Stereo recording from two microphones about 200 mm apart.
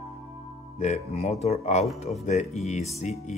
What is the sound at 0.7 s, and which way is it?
Speech, 30° left (ahead or behind).